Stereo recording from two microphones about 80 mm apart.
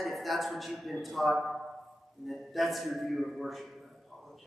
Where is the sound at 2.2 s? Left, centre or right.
Centre.